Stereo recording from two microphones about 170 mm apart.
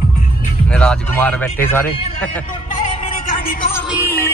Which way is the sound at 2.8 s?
50° left (ahead or behind).